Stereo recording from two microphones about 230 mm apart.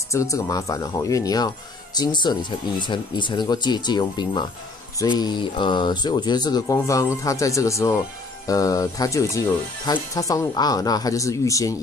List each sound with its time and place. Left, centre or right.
0.1 s speech: centre